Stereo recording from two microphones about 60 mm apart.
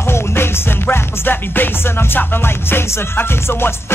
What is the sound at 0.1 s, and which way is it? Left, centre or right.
Music, left.